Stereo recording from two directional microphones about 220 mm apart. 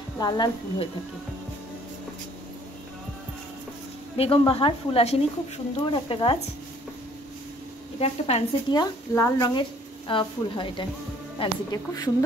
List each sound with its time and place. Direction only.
0.2 s a woman's voice: 20° left (ahead or behind)
4.2 s a woman's voice: 25° left (ahead or behind)
8.0 s a woman's voice: 25° left (ahead or behind)
9.1 s a woman's voice: 15° left (ahead or behind)